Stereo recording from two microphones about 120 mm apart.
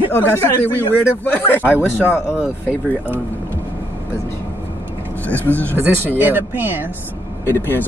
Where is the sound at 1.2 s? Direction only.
15° left (ahead or behind).